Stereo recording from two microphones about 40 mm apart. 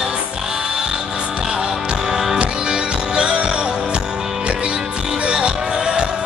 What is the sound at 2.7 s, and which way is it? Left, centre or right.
Music, right.